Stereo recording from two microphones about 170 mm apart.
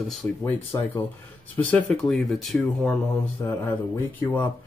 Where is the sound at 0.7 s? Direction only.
20° left (ahead or behind).